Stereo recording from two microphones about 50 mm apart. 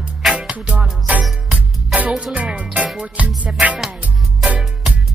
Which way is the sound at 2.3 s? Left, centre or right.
Right.